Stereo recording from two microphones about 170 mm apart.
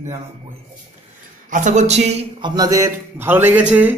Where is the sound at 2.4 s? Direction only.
20° right (ahead or behind).